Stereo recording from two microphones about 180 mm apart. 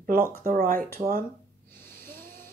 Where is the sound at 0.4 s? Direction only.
50° right (ahead or behind).